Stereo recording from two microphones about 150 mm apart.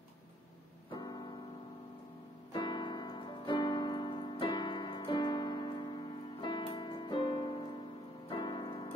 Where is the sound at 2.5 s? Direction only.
30° left (ahead or behind).